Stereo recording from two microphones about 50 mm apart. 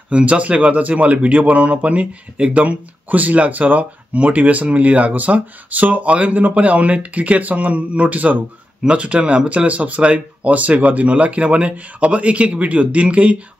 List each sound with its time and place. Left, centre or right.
0.1 s speech: right